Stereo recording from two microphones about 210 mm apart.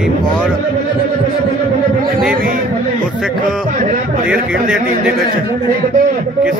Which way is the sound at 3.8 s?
35° right (ahead or behind).